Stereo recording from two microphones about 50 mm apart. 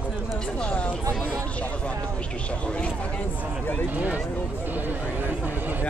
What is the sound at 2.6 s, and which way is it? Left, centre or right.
Speech, left.